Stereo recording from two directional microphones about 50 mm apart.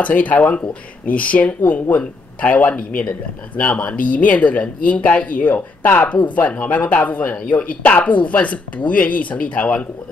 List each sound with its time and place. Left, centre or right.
0.0 s speech: left
1.6 s speech: left